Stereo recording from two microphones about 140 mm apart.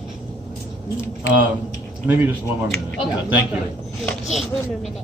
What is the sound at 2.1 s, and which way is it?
Speech, 15° right (ahead or behind).